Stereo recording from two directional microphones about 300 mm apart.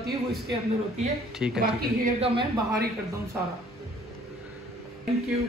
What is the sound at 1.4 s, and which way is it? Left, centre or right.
Speech, centre.